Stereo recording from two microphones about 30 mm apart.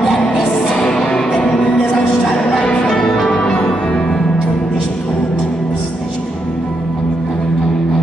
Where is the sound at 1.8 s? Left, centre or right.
Centre.